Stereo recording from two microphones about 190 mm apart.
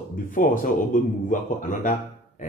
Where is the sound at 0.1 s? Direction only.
45° left (ahead or behind).